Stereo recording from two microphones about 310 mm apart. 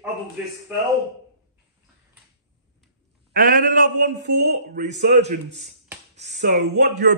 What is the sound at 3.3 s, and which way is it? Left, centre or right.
A man's voice, right.